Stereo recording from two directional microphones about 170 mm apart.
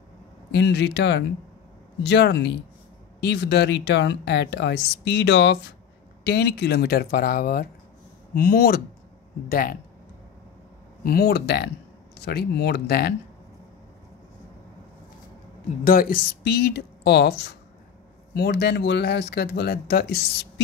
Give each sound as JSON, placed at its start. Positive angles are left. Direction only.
{"t": 0.5, "sound": "speech", "side_deg": 90}
{"t": 6.2, "sound": "speech", "side_deg": 80}
{"t": 11.1, "sound": "speech", "side_deg": 65}
{"t": 15.8, "sound": "speech", "side_deg": 55}